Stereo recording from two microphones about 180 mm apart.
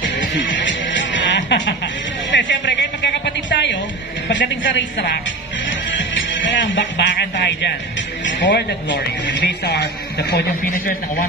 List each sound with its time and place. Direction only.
0.4 s music: 90° left
2.3 s a sound: 90° left
4.3 s speech: 90° left
5.9 s music: 90° left
8.3 s speech: 85° left
9.4 s a man's voice: 65° left (ahead or behind)